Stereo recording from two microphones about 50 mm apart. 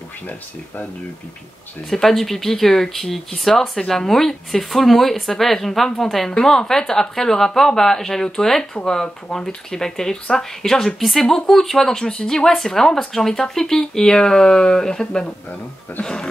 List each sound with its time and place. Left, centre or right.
1.9 s speech: centre